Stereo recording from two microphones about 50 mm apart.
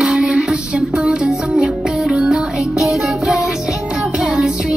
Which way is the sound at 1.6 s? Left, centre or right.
Centre.